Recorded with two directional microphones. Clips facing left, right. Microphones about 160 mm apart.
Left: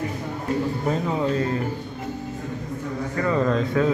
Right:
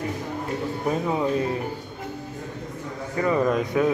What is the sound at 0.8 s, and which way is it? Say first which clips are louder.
Speech: right 2 dB; 15° right (ahead or behind).